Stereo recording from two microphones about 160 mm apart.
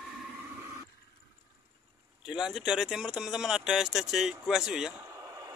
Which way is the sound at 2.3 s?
Centre (ahead or behind).